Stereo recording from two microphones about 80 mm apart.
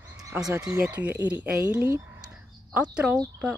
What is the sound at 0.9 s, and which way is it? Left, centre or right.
Speech, centre.